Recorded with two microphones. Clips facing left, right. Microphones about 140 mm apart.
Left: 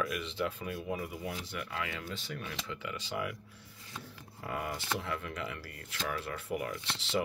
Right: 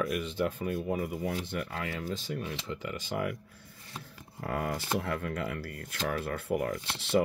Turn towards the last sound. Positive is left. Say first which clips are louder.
# right 6 dB
turn(degrees=-55)  # may be behind; listen again after turning